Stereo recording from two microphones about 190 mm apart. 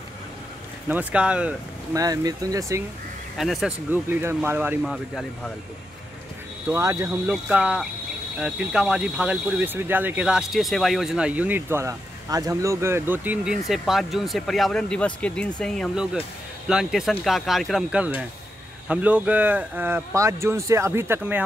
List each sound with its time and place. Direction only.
0.8 s speech: 5° right (ahead or behind)
2.0 s speech: 20° right (ahead or behind)
3.3 s speech: centre (ahead or behind)
3.9 s speech: 10° right (ahead or behind)
4.9 s speech: centre (ahead or behind)
6.7 s speech: 15° right (ahead or behind)